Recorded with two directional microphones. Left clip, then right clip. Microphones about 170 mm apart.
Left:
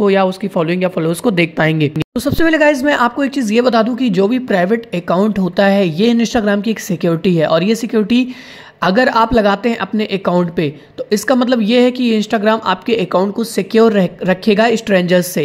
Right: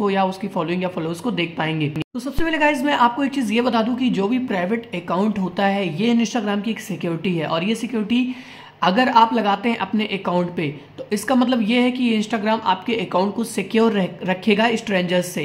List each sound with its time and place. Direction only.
0.0 s speech: 30° left (ahead or behind)
1.2 s speech: 45° left (ahead or behind)